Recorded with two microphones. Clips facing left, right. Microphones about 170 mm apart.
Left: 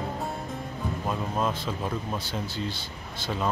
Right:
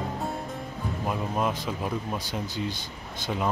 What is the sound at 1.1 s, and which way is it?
Speech, 15° right (ahead or behind).